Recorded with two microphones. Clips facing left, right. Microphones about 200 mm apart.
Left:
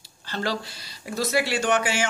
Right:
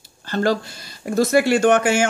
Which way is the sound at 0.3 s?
50° right (ahead or behind).